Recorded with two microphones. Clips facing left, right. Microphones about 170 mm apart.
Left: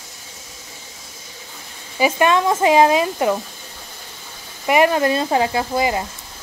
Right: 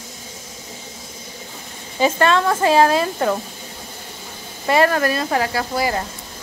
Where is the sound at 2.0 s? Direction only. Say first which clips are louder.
Even; 15° left (ahead or behind).